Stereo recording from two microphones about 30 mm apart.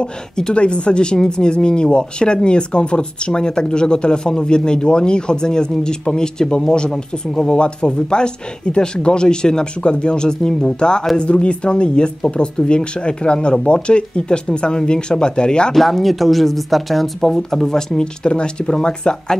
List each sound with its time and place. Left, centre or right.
0.6 s speech: left
15.7 s speech: centre
18.0 s speech: left